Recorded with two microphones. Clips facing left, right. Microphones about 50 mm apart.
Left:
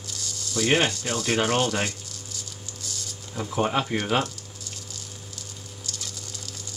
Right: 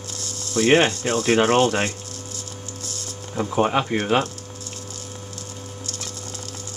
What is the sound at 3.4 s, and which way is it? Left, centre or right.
Speech, centre.